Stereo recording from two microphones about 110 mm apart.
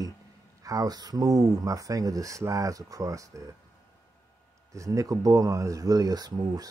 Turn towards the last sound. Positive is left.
turn(degrees=-35)  # may be behind; listen again after turning